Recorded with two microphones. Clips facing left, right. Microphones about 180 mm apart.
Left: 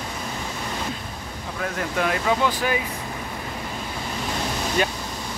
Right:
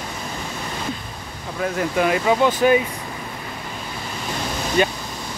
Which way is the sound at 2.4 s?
20° right (ahead or behind).